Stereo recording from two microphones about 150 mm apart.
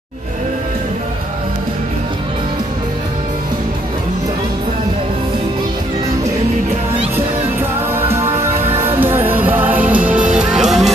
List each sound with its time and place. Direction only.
7.9 s music: 15° right (ahead or behind)